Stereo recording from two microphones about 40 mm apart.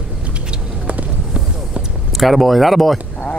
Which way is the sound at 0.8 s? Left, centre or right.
Right.